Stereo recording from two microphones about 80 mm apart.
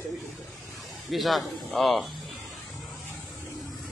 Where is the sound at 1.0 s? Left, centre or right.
Centre.